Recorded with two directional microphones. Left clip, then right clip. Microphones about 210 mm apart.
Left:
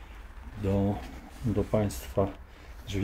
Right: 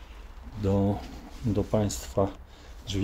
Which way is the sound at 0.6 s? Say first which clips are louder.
Right 2 dB; 25° right (ahead or behind).